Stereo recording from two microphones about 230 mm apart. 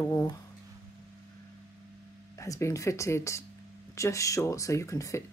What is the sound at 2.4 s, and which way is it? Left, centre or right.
A woman's voice, centre.